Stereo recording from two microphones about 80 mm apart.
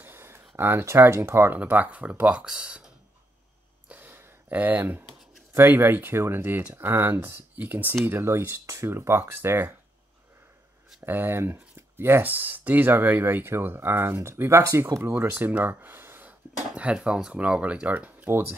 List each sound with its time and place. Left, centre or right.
0.0 s a sound: right
0.6 s speech: right
1.6 s speech: centre
3.9 s a sound: right
4.6 s speech: right
11.1 s speech: right
16.7 s speech: centre